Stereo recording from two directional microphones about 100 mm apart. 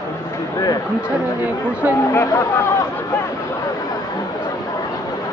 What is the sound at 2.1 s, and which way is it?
Speech, 30° left (ahead or behind).